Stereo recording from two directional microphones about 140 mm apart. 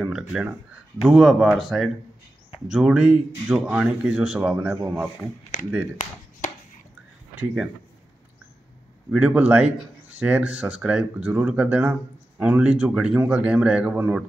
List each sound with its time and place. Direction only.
0.0 s speech: 5° right (ahead or behind)
7.3 s speech: 5° right (ahead or behind)
9.1 s speech: 10° right (ahead or behind)